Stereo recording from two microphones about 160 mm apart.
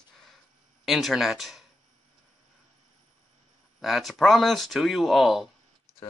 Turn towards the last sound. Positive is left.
turn(degrees=0)  # may be behind; listen again after turning